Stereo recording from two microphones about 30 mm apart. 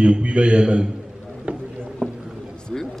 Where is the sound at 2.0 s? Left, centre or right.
Right.